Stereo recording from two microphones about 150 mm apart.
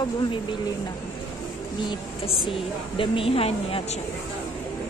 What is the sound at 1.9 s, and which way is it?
A woman's voice, 35° left (ahead or behind).